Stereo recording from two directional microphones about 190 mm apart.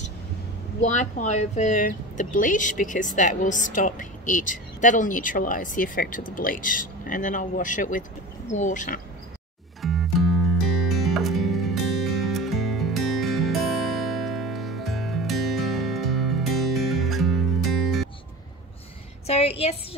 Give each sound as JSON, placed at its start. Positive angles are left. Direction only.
{"t": 0.8, "sound": "speech", "side_deg": 40}
{"t": 9.8, "sound": "music", "side_deg": 0}
{"t": 19.2, "sound": "a woman's voice", "side_deg": 35}